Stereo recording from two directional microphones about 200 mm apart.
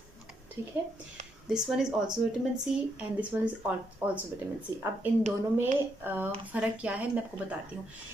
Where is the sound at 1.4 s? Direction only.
5° right (ahead or behind).